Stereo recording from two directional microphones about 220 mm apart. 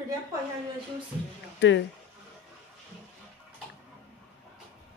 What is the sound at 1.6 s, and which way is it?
Speech, 55° left (ahead or behind).